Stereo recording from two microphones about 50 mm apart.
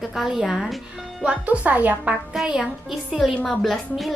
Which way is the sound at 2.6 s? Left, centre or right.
Centre.